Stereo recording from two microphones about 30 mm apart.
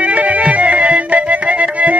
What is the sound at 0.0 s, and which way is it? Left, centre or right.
Music, right.